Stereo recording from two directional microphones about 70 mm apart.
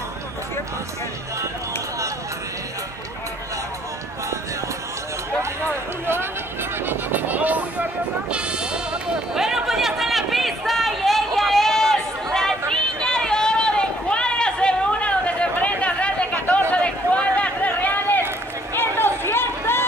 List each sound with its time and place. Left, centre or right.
6.9 s vehicle: right
8.3 s sheep: centre
9.3 s run: centre
16.7 s a sound: centre; by 19.8 s left